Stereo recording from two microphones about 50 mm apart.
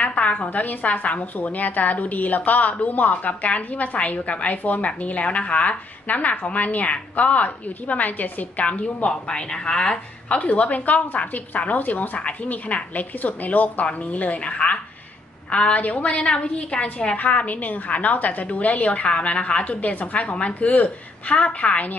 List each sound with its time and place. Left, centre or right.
0.0 s a woman's voice: left
9.1 s speech: centre
10.2 s a woman's voice: left